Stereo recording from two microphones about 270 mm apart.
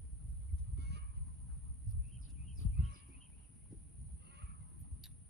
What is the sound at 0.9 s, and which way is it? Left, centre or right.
Fowl, right.